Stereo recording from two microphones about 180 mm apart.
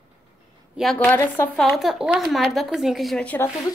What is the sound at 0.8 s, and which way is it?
Speech, 5° left (ahead or behind).